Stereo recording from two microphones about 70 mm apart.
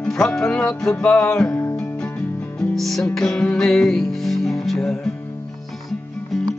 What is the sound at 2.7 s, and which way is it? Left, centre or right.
Music, centre.